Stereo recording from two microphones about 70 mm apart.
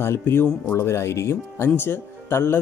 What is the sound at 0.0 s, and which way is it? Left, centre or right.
A man's voice, left.